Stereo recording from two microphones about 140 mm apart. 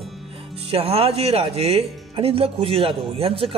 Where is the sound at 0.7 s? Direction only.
45° right (ahead or behind).